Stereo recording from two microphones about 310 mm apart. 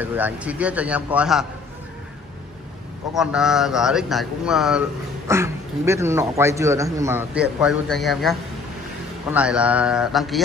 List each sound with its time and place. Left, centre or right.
0.0 s a man's voice: centre
3.2 s a man's voice: centre